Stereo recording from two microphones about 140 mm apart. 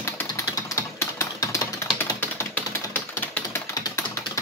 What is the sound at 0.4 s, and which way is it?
Typing, 25° left (ahead or behind).